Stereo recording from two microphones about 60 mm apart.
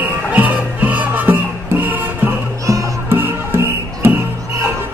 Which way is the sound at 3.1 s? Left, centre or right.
Right.